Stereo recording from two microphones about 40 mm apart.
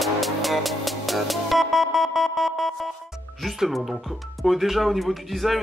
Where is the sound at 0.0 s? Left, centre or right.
Centre.